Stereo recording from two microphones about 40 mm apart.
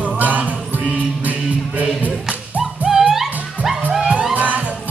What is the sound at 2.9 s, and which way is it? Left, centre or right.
Music, centre.